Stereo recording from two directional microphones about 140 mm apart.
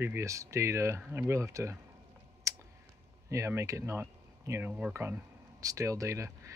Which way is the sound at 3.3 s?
20° right (ahead or behind).